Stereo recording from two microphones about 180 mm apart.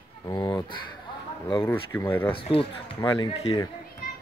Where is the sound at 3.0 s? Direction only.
20° left (ahead or behind).